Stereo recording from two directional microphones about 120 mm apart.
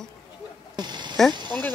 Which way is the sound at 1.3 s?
40° right (ahead or behind).